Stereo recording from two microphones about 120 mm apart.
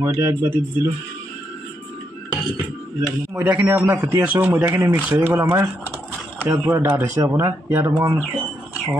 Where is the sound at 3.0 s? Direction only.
20° right (ahead or behind).